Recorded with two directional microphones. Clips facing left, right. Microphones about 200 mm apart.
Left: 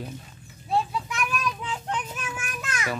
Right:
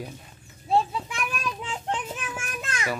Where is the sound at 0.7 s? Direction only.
25° right (ahead or behind).